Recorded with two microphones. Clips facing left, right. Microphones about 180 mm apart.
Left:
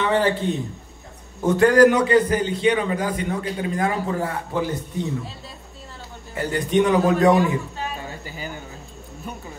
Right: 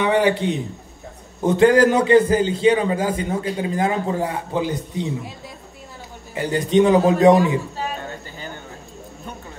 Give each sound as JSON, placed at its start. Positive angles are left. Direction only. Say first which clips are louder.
{"t": 0.0, "sound": "speech", "louder": "right 3 dB", "side_deg": -15}
{"t": 1.4, "sound": "a man's voice", "louder": "even", "side_deg": -20}
{"t": 6.3, "sound": "a man's voice", "louder": "right 3 dB", "side_deg": -20}